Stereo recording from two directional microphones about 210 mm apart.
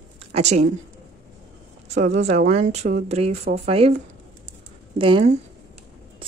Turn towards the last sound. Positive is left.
turn(degrees=-25)  # may be behind; listen again after turning